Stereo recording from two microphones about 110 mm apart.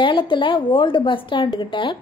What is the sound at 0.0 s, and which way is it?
Speech, 50° left (ahead or behind).